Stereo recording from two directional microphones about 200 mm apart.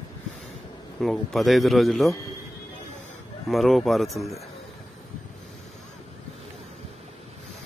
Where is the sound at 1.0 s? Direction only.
Centre (ahead or behind).